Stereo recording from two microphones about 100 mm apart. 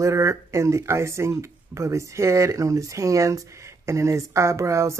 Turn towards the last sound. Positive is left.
turn(degrees=-30)  # may be behind; listen again after turning